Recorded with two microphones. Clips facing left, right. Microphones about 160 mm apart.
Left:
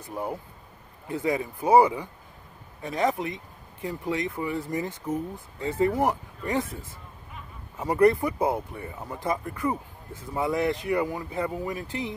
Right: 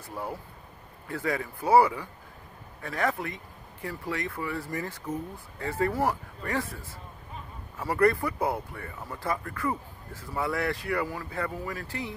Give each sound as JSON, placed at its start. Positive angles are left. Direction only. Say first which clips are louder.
{"t": 0.0, "sound": "speech", "louder": "left 4 dB", "side_deg": 20}